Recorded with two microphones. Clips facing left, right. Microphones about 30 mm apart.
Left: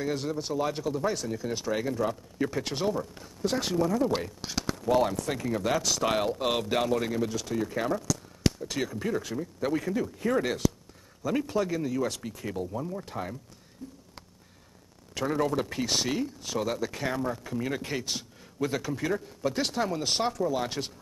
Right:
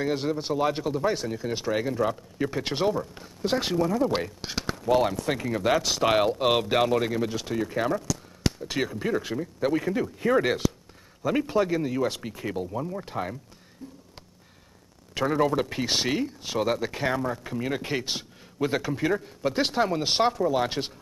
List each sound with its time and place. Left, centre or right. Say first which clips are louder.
0.0 s speech: right 4 dB; right
15.1 s speech: right 4 dB; right